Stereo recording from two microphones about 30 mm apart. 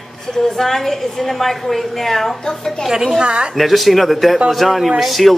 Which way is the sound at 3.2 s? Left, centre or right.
Right.